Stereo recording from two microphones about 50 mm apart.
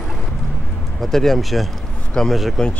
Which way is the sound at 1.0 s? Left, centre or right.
Centre.